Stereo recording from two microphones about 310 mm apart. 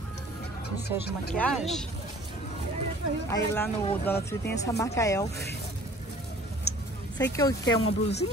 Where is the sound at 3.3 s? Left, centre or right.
Centre.